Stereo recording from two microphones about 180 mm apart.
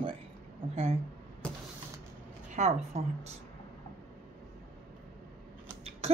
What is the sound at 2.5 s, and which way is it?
Speech, 40° right (ahead or behind).